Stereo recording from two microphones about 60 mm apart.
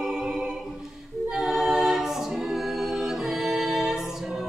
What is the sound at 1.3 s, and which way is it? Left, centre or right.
A capella, centre.